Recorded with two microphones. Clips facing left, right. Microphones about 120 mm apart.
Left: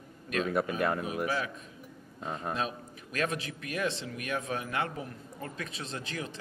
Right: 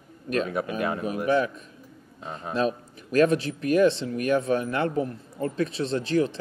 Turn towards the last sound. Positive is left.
turn(degrees=-35)  # may be behind; listen again after turning